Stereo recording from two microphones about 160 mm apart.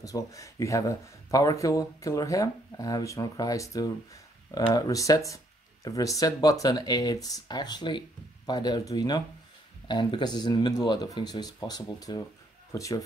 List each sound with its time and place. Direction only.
0.0 s speech: 20° left (ahead or behind)